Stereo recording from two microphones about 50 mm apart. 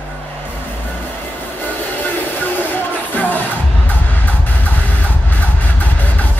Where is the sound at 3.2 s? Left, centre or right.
Left.